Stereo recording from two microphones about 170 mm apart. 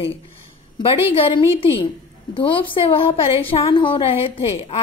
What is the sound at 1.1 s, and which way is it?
A woman's voice, 35° left (ahead or behind).